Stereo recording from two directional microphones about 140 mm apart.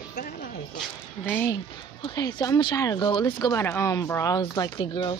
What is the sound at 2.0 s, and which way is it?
Speech, 30° left (ahead or behind).